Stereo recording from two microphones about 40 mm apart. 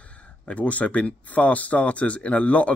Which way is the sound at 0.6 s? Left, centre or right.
Left.